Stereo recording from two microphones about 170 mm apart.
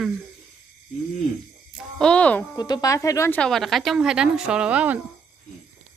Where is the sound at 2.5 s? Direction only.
25° left (ahead or behind).